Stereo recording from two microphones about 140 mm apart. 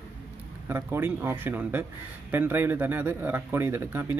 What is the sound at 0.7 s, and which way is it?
Speech, 15° right (ahead or behind).